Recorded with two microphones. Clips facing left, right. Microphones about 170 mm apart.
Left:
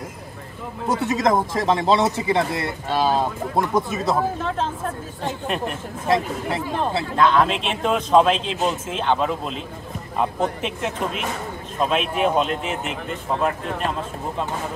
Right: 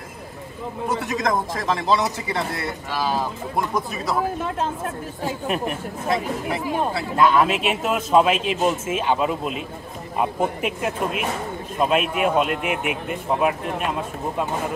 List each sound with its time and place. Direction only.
1.0 s speech: 25° left (ahead or behind)
5.2 s a man's voice: 5° right (ahead or behind)